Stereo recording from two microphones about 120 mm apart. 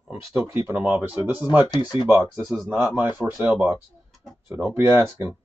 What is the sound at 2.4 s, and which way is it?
Speech, centre (ahead or behind).